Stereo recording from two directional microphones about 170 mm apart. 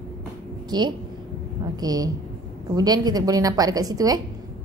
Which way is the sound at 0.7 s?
25° right (ahead or behind).